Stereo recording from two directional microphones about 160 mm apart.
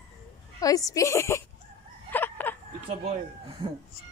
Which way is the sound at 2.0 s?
10° left (ahead or behind).